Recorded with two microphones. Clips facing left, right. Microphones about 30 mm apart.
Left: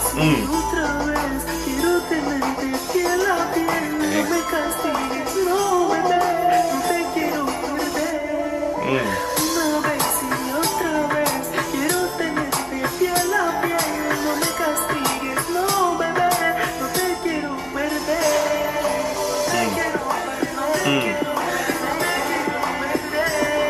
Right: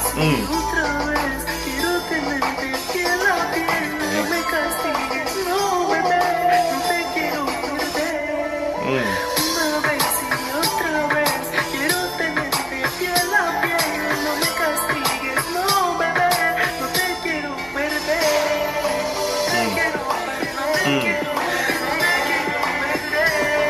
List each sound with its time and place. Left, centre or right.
3.1 s music: right
5.4 s music: right
9.6 s music: right
15.8 s music: right
18.3 s music: right